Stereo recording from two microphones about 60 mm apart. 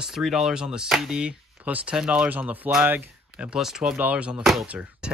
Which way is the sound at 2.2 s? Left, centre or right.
Right.